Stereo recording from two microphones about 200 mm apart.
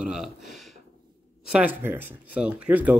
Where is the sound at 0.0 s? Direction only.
5° right (ahead or behind).